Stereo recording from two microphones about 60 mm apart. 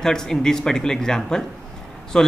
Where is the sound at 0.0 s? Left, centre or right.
Centre.